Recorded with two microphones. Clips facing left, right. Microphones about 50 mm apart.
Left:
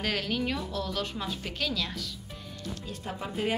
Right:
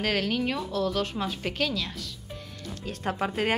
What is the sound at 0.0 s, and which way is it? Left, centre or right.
Speech, right.